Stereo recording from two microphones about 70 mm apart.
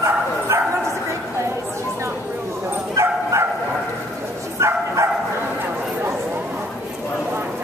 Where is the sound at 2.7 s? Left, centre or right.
Right.